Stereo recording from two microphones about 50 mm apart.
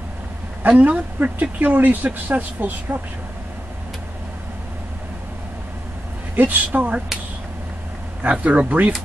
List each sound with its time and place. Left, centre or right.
0.7 s speech: right
6.3 s speech: right
8.2 s speech: right